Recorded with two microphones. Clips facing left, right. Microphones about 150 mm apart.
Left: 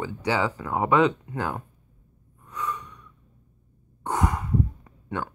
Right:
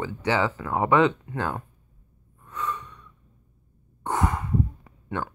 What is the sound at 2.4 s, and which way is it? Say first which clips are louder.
Gasp: even; 15° left (ahead or behind).